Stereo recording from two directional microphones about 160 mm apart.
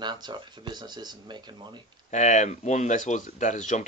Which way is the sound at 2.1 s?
50° left (ahead or behind).